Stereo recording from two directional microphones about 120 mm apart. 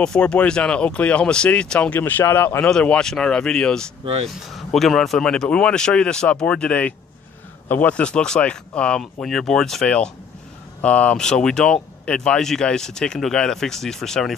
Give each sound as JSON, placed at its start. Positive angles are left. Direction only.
{"t": 0.0, "sound": "speech", "side_deg": 10}
{"t": 4.0, "sound": "speech", "side_deg": -55}
{"t": 4.7, "sound": "speech", "side_deg": 0}